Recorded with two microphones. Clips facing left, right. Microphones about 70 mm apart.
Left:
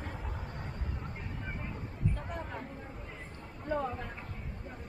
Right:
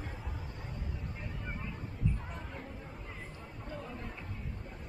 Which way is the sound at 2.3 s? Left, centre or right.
Left.